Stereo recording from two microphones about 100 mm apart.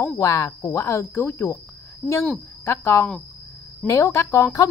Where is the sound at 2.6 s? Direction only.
25° left (ahead or behind).